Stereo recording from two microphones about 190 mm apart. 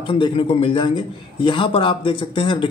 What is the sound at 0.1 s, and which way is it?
A man's voice, 30° left (ahead or behind).